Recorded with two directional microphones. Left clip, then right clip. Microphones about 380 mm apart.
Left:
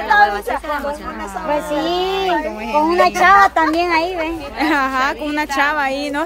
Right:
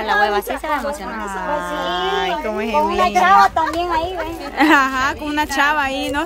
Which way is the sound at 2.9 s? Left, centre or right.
Left.